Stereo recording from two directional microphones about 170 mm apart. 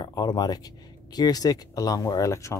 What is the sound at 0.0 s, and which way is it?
Speech, 25° left (ahead or behind).